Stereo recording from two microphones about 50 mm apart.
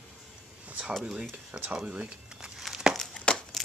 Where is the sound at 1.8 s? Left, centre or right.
Right.